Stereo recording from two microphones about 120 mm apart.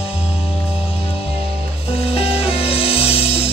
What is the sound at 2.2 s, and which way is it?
Music, 55° left (ahead or behind).